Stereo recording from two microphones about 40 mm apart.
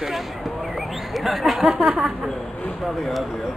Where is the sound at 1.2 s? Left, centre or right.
Centre.